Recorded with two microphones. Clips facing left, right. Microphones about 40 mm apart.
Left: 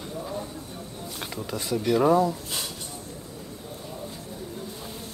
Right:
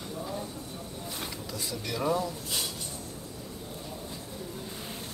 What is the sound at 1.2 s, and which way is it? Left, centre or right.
Speech, left.